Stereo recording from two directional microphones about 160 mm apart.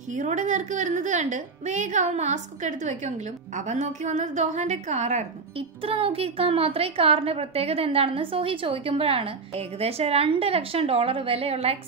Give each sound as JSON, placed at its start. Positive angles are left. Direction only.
{"t": 0.1, "sound": "a woman's voice", "side_deg": -50}
{"t": 5.9, "sound": "a woman's voice", "side_deg": -35}